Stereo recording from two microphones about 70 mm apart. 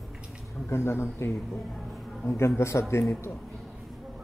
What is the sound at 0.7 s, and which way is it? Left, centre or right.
A man's voice, left.